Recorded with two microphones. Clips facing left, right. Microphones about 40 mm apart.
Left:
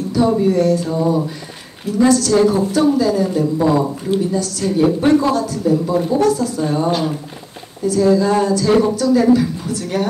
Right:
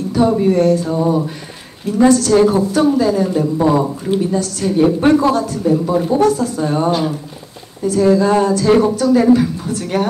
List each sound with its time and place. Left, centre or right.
0.4 s speech: right
2.0 s speech: right